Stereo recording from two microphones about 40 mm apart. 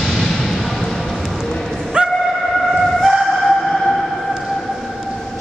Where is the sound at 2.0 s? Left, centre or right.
Right.